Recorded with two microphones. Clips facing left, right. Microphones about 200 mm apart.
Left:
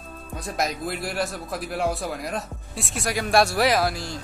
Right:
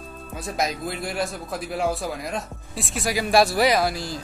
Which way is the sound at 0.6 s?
Centre (ahead or behind).